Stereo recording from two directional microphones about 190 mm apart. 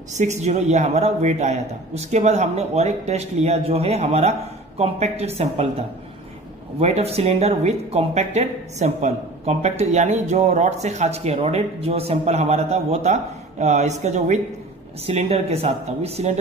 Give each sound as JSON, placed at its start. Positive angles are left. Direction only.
{"t": 0.1, "sound": "speech", "side_deg": -40}